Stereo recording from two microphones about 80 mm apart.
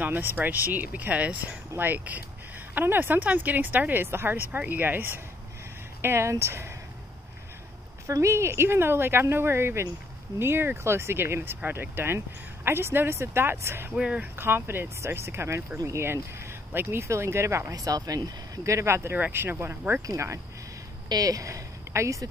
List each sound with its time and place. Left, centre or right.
0.0 s speech: right
8.1 s speech: right
13.9 s speech: centre
14.2 s speech: right
17.7 s speech: right
19.1 s speech: right
20.1 s speech: right
21.1 s speech: right